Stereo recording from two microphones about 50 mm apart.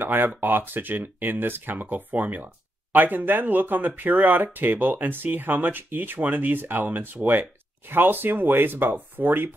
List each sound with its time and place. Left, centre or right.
0.0 s speech: right